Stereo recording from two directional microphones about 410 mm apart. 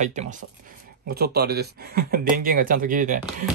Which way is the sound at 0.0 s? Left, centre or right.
Centre.